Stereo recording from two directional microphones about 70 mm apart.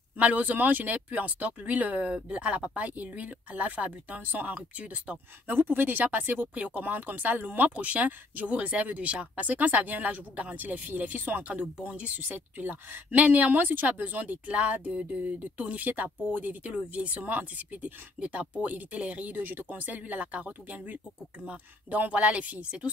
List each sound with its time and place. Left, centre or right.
0.2 s speech: right
5.5 s speech: right